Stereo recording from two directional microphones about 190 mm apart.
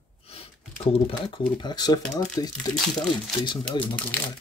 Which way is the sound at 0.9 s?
30° left (ahead or behind).